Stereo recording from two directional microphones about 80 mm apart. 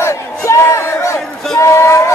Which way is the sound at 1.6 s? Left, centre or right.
Left.